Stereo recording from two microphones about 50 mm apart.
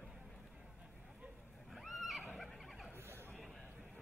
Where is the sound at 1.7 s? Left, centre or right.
Centre.